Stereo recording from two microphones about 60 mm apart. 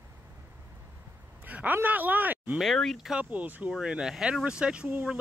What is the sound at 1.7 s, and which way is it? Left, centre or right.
Speech, right.